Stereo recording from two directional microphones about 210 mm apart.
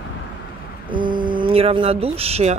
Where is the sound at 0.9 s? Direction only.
20° right (ahead or behind).